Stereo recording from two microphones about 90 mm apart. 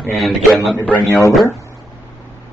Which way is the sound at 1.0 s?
35° left (ahead or behind).